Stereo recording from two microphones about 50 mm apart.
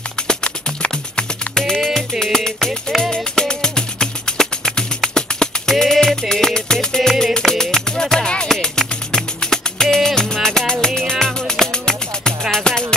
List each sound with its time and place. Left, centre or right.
0.3 s music: centre